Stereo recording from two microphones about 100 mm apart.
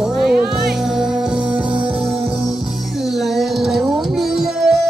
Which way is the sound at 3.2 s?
Centre (ahead or behind).